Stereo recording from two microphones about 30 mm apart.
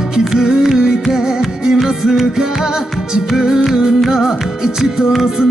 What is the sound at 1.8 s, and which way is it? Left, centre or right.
Music, centre.